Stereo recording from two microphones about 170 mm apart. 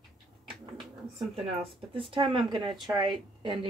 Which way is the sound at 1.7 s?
30° right (ahead or behind).